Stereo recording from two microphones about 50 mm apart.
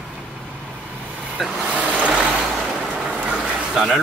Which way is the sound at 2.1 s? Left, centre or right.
Centre.